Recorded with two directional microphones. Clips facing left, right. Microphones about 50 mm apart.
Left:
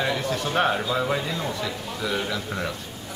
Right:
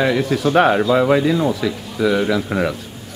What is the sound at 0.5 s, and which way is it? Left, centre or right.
Speech, right.